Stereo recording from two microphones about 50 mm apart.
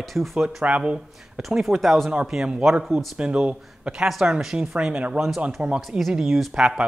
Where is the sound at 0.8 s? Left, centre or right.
Right.